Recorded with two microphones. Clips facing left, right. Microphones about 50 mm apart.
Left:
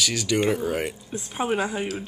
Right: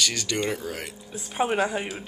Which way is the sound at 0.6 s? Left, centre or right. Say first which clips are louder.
Left 8 dB; centre.